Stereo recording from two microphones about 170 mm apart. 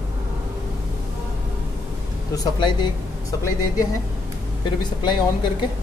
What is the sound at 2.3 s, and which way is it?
Speech, 25° left (ahead or behind).